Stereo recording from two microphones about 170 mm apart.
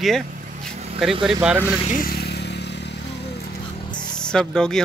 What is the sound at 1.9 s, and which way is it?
Vehicle, 55° left (ahead or behind).